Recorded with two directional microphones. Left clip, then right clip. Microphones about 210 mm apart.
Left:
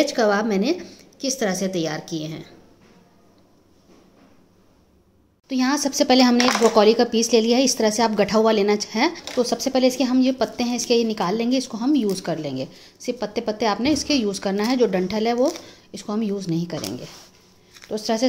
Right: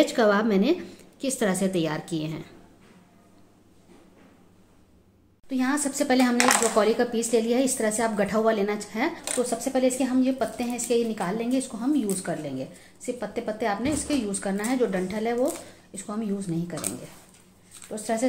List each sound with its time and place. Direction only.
0.0 s a woman's voice: centre (ahead or behind)
5.5 s speech: 40° left (ahead or behind)
17.8 s speech: 40° left (ahead or behind)